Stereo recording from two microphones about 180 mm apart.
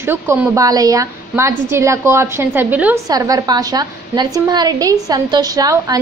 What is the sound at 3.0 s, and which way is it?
A woman's voice, 20° right (ahead or behind).